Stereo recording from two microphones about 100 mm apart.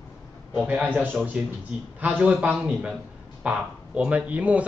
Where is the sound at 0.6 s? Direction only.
15° right (ahead or behind).